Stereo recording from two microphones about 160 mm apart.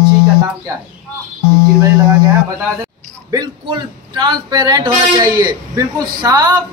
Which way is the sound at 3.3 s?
25° right (ahead or behind).